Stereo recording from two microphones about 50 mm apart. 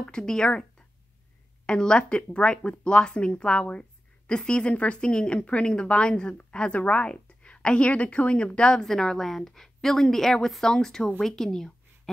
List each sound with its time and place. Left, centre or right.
0.0 s a woman's voice: centre